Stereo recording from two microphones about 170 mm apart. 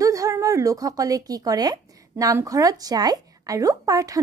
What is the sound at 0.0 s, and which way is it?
A woman's voice, 20° right (ahead or behind).